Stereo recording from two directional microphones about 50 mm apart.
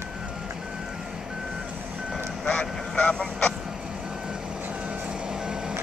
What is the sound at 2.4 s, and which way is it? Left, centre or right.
Vehicle, left.